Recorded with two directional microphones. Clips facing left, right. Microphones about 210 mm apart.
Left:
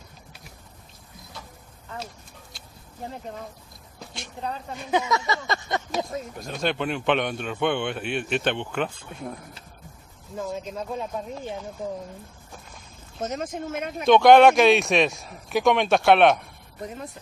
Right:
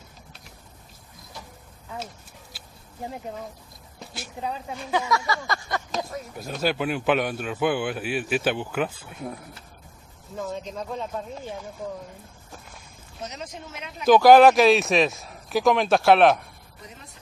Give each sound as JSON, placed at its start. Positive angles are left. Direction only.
{"t": 2.5, "sound": "a sound", "side_deg": -5}
{"t": 4.1, "sound": "a man's voice", "side_deg": -5}
{"t": 4.9, "sound": "a sound", "side_deg": 20}
{"t": 6.3, "sound": "a man's voice", "side_deg": -5}
{"t": 10.3, "sound": "speech", "side_deg": 5}
{"t": 13.2, "sound": "speech", "side_deg": 50}
{"t": 14.0, "sound": "a man's voice", "side_deg": 0}